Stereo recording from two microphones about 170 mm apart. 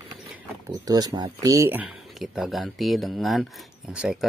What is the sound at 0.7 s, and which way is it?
Speech, 20° right (ahead or behind).